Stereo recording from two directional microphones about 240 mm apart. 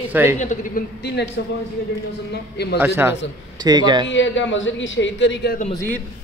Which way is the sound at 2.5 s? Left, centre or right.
Left.